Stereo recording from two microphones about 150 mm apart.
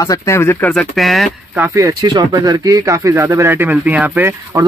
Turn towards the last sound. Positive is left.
turn(degrees=-15)  # may be behind; listen again after turning